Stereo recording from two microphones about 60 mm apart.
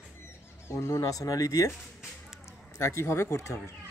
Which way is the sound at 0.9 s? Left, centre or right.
Left.